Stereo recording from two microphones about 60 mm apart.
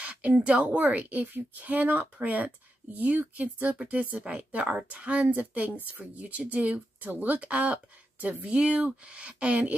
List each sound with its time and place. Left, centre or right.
0.0 s speech: right